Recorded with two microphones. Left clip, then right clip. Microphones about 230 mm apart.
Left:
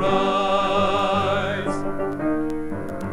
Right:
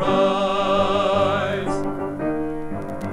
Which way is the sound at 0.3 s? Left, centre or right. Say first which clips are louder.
Even; right.